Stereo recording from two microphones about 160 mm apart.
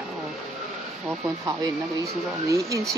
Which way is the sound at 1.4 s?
20° right (ahead or behind).